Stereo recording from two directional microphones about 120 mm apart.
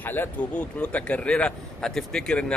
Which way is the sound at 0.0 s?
15° left (ahead or behind).